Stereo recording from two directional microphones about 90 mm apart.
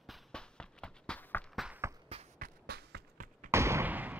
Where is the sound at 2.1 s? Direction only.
90° right.